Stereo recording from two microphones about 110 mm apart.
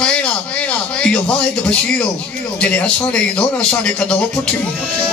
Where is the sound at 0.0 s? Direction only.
10° left (ahead or behind).